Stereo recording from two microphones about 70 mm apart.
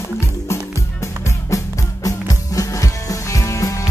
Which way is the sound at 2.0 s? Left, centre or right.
Left.